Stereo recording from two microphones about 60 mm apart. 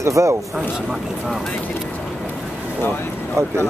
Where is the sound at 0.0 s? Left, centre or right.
Right.